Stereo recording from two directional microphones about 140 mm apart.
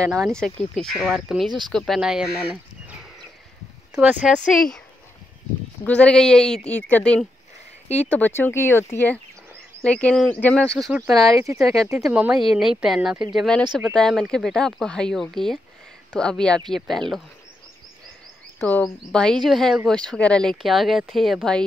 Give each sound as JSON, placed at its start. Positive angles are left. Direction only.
{"t": 0.1, "sound": "speech", "side_deg": 5}
{"t": 4.5, "sound": "speech", "side_deg": 5}
{"t": 5.9, "sound": "speech", "side_deg": 5}
{"t": 11.2, "sound": "speech", "side_deg": -20}
{"t": 12.0, "sound": "speech", "side_deg": -5}
{"t": 18.7, "sound": "speech", "side_deg": 10}